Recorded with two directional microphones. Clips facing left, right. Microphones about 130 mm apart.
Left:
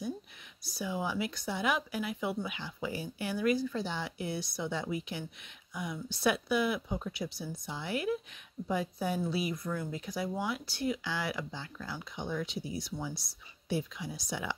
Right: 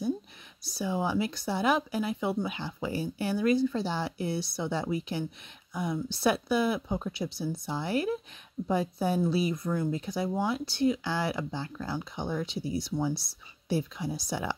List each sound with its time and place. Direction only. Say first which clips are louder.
0.7 s speech: right 5 dB; 30° right (ahead or behind)